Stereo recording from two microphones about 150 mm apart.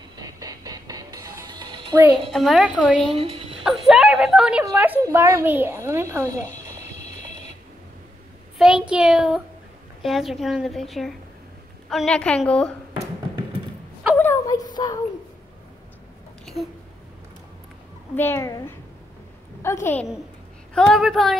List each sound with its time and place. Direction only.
0.2 s music: 25° right (ahead or behind)
2.3 s a woman's voice: centre (ahead or behind)
3.1 s speech: 40° right (ahead or behind)
3.6 s a woman's voice: centre (ahead or behind); by 6.3 s 15° right (ahead or behind)
8.5 s a woman's voice: 5° right (ahead or behind)
14.1 s a sound: 15° left (ahead or behind)
18.1 s a child's voice: 15° left (ahead or behind)
20.7 s a woman's voice: 5° left (ahead or behind)